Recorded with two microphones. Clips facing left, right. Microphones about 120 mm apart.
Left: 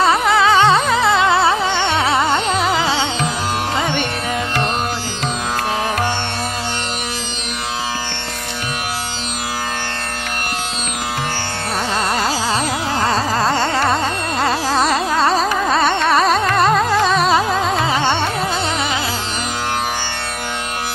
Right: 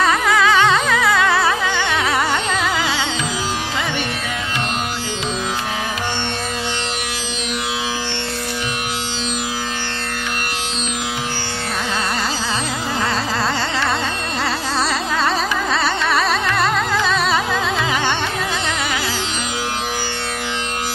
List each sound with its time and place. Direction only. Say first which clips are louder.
0.0 s music: left 2 dB; 30° left (ahead or behind)
13.0 s carnatic music: left 4 dB; 40° left (ahead or behind)